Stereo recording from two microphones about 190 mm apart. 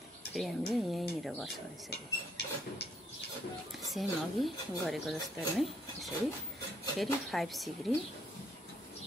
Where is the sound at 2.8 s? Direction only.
60° left (ahead or behind).